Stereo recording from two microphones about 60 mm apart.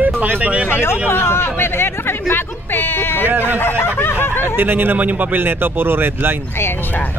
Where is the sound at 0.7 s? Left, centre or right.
Left.